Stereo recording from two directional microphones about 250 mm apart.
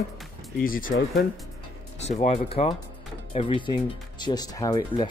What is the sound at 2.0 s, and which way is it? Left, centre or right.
Speech, left.